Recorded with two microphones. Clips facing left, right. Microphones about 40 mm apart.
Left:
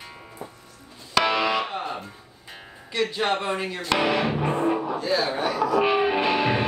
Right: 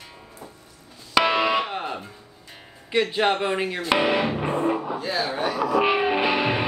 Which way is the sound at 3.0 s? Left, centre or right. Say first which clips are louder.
Right 3 dB; right.